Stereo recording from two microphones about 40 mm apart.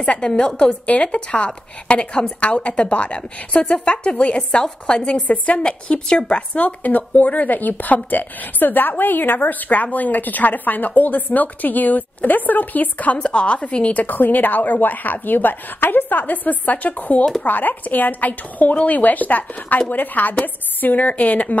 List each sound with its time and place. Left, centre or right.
0.0 s a woman's voice: left
0.3 s a woman's voice: centre
6.6 s a woman's voice: left
13.2 s a woman's voice: left
13.9 s a woman's voice: left